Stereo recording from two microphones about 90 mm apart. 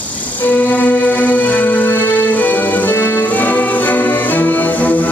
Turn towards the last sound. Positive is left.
turn(degrees=20)  # may be behind; listen again after turning